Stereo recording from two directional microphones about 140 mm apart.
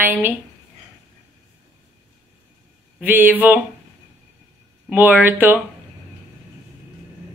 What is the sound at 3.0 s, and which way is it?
Speech, 15° right (ahead or behind).